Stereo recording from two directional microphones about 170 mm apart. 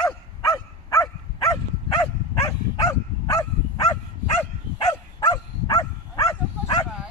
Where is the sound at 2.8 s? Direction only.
20° left (ahead or behind).